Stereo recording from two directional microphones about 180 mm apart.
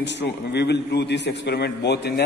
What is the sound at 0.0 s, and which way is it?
A man's voice, 70° left (ahead or behind).